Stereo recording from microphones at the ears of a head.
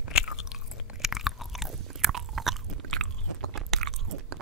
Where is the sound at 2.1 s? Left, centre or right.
Right.